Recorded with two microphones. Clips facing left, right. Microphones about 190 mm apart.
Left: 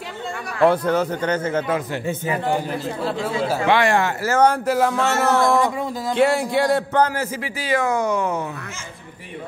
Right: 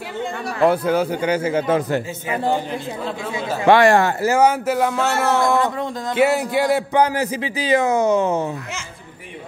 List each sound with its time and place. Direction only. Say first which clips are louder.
0.6 s a man's voice: even; 5° right (ahead or behind)
3.6 s speech: right 6 dB; 45° right (ahead or behind)
4.2 s a man's voice: right 1 dB; 15° right (ahead or behind)
4.5 s a sound: even; centre (ahead or behind)
6.1 s a man's voice: right 1 dB; 5° right (ahead or behind); by 8.5 s 25° right (ahead or behind)